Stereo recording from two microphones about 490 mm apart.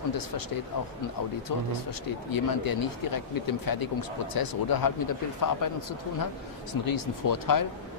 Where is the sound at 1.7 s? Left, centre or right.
Left.